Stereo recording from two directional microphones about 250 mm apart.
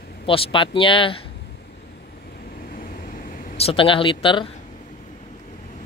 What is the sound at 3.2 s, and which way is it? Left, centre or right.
Speech, left.